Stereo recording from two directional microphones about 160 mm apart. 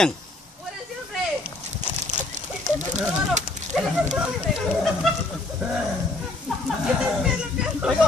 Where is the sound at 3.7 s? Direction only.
Centre (ahead or behind).